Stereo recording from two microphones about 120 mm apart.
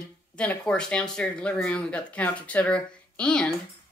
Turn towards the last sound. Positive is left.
turn(degrees=10)  # may be behind; listen again after turning